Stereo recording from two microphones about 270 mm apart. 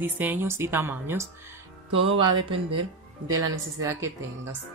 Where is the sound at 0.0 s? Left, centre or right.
Centre.